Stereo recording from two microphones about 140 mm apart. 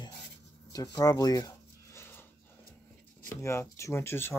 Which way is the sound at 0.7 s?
25° left (ahead or behind).